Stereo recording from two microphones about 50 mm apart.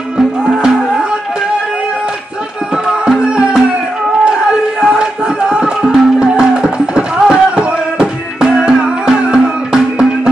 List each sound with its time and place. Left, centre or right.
0.7 s music: centre
2.9 s music: centre